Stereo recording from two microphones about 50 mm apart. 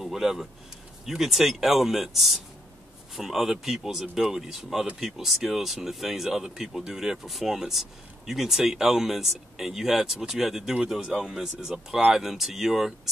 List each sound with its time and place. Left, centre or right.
0.0 s speech: centre